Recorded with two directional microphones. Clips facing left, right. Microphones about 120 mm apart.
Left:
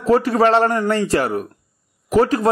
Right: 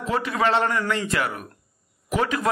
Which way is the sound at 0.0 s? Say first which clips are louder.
Left 8 dB; 40° left (ahead or behind).